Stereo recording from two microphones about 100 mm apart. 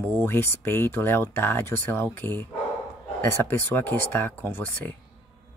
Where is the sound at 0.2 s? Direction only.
25° left (ahead or behind).